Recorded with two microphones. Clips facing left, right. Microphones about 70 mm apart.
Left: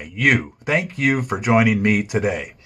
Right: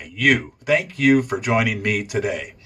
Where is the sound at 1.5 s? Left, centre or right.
Left.